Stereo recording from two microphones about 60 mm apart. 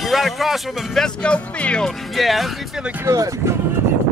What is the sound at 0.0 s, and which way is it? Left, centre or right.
Speech, centre.